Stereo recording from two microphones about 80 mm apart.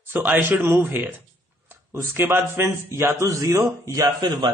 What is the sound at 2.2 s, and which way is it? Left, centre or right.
A man's voice, right.